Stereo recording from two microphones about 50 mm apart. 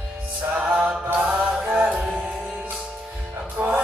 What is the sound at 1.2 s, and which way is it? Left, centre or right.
Music, centre.